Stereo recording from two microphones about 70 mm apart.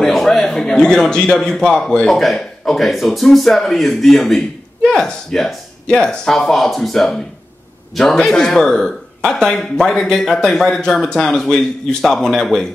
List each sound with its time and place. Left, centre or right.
0.0 s a man's voice: centre